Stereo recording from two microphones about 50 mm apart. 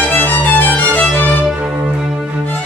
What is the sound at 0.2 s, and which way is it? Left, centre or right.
Music, left.